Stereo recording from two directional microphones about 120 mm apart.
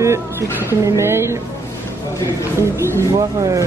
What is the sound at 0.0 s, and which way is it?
Speech, 25° right (ahead or behind).